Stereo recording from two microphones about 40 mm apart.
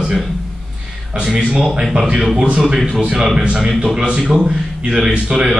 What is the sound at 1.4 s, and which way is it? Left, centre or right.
A man's voice, right.